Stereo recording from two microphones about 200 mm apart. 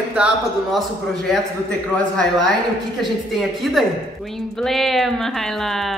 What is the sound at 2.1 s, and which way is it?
A woman's voice, centre (ahead or behind).